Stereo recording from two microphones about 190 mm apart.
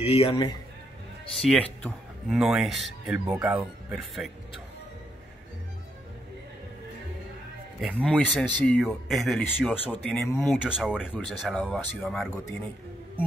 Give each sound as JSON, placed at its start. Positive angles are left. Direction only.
{"t": 0.0, "sound": "a man's voice", "side_deg": 30}
{"t": 1.4, "sound": "speech", "side_deg": 5}
{"t": 7.8, "sound": "speech", "side_deg": 5}